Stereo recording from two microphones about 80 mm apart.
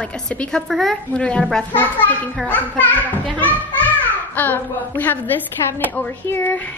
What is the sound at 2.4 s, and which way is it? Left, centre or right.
A child's voice, left.